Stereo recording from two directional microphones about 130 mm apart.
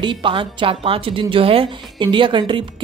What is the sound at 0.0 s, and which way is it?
A woman's voice, 40° right (ahead or behind).